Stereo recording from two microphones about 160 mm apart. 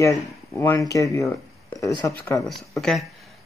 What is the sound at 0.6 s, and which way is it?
Speech, 20° left (ahead or behind).